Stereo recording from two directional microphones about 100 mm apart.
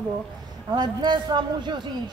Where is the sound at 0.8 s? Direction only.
45° right (ahead or behind).